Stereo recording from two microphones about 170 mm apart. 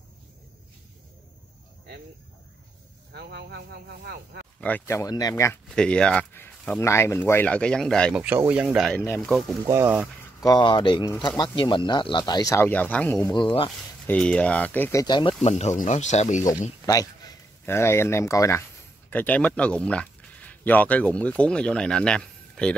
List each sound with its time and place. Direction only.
3.2 s speech: 75° right (ahead or behind)
4.6 s speech: 10° left (ahead or behind)
5.7 s speech: 5° left (ahead or behind)
8.1 s speech: 10° right (ahead or behind)
8.9 s speech: 15° left (ahead or behind)
9.2 s speech: centre (ahead or behind)
9.7 s speech: 15° right (ahead or behind)
10.4 s speech: 25° left (ahead or behind)
12.6 s speech: 10° left (ahead or behind)
13.3 s speech: 30° left (ahead or behind)
14.0 s speech: 5° left (ahead or behind); by 15.3 s 25° left (ahead or behind)
15.4 s speech: 40° left (ahead or behind)
16.8 s speech: 20° left (ahead or behind); by 22.8 s 5° left (ahead or behind)